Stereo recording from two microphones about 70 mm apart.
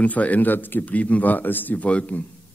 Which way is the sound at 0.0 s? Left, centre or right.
Left.